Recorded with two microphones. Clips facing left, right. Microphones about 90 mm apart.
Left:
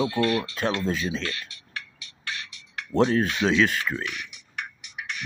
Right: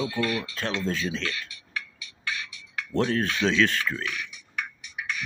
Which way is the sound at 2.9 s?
15° left (ahead or behind).